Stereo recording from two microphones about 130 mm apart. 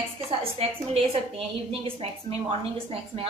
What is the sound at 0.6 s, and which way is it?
A woman's voice, 50° right (ahead or behind).